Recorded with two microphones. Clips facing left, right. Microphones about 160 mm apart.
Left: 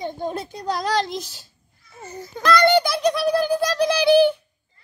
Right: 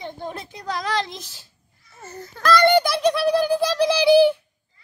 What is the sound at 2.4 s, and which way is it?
A child's voice, centre (ahead or behind).